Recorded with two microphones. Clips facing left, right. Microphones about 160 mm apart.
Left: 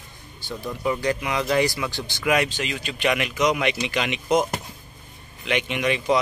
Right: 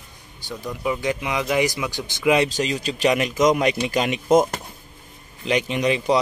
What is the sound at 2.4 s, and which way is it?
Speech, 40° right (ahead or behind).